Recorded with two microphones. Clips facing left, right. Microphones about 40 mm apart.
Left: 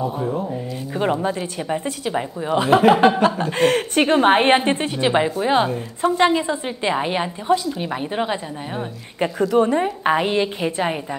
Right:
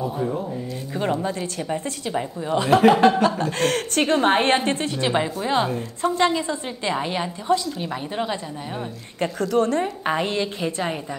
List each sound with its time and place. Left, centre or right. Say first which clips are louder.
0.0 s a woman's voice: left 2 dB; centre